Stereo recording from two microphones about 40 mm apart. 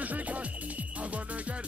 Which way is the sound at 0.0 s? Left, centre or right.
Right.